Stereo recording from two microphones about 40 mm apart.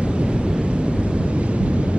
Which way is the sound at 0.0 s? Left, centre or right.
Right.